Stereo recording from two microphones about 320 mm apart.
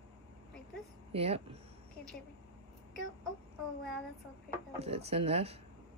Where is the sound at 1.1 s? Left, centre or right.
Centre.